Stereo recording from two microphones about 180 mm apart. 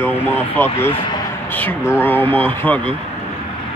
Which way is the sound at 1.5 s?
10° left (ahead or behind).